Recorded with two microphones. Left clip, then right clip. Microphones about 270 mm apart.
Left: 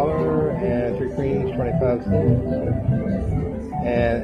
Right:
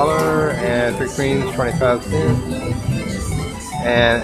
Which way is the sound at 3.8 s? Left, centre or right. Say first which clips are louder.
Right 7 dB; centre.